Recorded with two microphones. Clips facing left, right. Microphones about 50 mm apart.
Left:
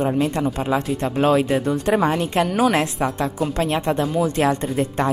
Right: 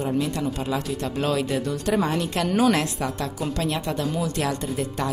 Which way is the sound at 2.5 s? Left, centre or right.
Centre.